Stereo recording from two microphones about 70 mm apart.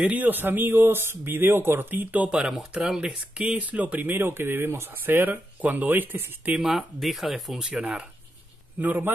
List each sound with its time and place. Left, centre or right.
0.0 s speech: right
2.3 s speech: centre
6.6 s speech: centre
7.8 s speech: centre